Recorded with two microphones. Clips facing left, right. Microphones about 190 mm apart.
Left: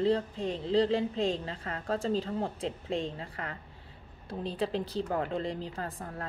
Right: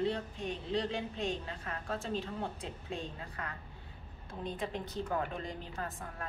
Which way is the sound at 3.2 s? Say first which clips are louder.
Left 4 dB; 30° left (ahead or behind).